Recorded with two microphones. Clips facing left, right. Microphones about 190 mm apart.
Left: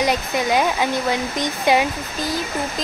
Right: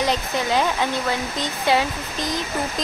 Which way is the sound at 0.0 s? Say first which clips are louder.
Left 2 dB; 15° left (ahead or behind).